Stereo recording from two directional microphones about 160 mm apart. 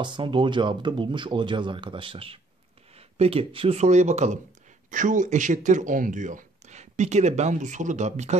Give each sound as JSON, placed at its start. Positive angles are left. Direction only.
{"t": 0.0, "sound": "speech", "side_deg": -30}